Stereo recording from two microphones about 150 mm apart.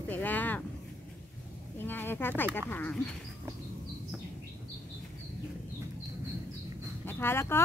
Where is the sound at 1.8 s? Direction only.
15° left (ahead or behind).